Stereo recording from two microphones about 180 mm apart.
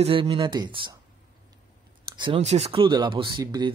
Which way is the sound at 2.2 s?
35° right (ahead or behind).